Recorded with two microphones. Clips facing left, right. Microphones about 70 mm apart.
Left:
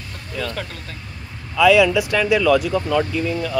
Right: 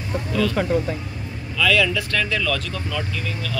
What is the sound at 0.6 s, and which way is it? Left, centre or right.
Speech, centre.